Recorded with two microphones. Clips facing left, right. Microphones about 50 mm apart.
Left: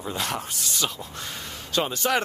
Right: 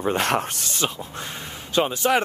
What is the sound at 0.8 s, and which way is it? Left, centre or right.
Speech, right.